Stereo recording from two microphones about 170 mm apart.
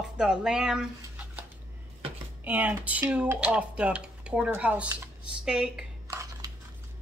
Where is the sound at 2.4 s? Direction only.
10° right (ahead or behind).